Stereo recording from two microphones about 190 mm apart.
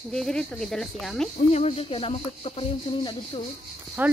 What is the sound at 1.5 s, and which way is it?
Speech, 35° left (ahead or behind).